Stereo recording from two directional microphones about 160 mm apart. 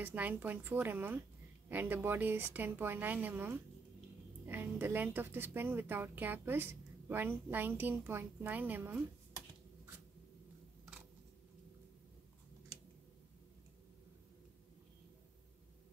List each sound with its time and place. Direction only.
0.0 s speech: 10° right (ahead or behind)